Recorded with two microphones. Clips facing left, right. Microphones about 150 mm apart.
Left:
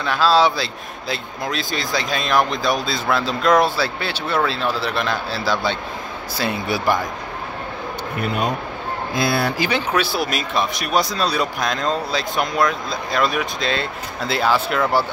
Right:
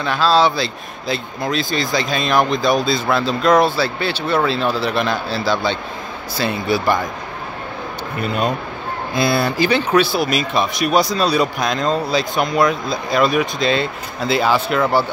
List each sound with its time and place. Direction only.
0.0 s speech: 5° left (ahead or behind)
8.2 s speech: 15° left (ahead or behind)
9.1 s speech: 75° right (ahead or behind)
9.6 s speech: 10° left (ahead or behind)